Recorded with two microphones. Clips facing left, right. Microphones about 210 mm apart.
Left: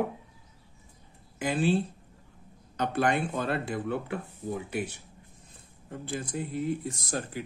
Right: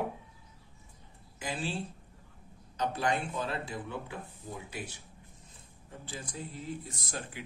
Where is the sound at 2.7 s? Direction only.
60° left (ahead or behind).